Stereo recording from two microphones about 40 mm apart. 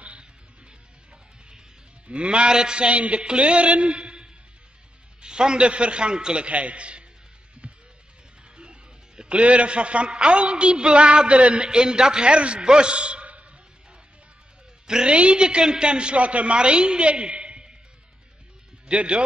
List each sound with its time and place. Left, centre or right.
0.0 s music: right
2.0 s a woman's voice: right
7.6 s music: right
9.4 s a woman's voice: right
14.9 s a woman's voice: right
18.9 s a woman's voice: right